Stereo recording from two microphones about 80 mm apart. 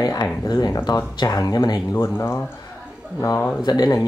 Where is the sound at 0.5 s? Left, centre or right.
Left.